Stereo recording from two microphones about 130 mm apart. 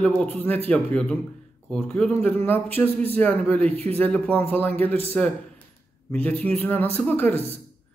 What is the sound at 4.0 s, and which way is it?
A man's voice, 10° left (ahead or behind).